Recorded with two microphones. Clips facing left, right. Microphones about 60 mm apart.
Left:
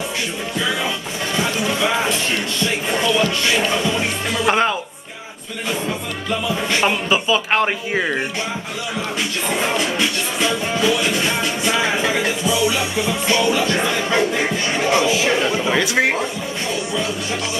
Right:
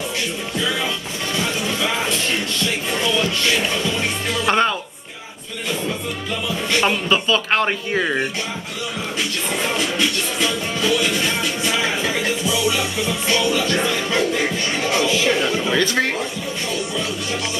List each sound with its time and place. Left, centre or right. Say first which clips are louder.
1.7 s music: left 3 dB; centre
4.5 s music: left 1 dB; centre
6.8 s speech: right 1 dB; centre
9.8 s music: left 1 dB; centre
14.9 s speech: left 2 dB; centre